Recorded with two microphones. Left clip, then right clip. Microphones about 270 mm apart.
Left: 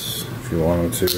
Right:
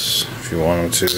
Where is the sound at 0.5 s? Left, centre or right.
Centre.